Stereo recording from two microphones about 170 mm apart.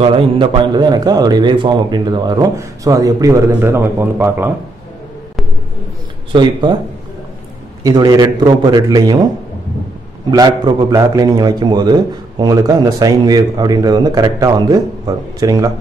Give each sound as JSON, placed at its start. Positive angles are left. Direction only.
{"t": 0.0, "sound": "a man's voice", "side_deg": -30}
{"t": 6.3, "sound": "a man's voice", "side_deg": -25}
{"t": 7.8, "sound": "a man's voice", "side_deg": -20}
{"t": 10.3, "sound": "a man's voice", "side_deg": -20}